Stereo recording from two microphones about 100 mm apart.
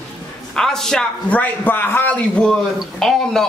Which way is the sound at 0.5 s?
5° left (ahead or behind).